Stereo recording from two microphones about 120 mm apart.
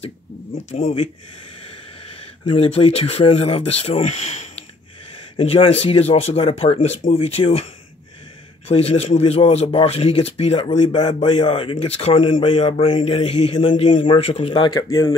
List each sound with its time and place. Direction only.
0.7 s speech: 55° left (ahead or behind)
2.4 s speech: 50° left (ahead or behind)
5.4 s speech: 55° left (ahead or behind)
8.6 s speech: 60° left (ahead or behind)
11.4 s speech: 45° left (ahead or behind)
14.5 s speech: 35° left (ahead or behind)